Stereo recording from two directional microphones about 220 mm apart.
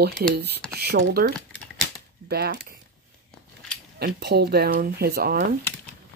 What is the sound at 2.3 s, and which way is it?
Speech, 45° right (ahead or behind).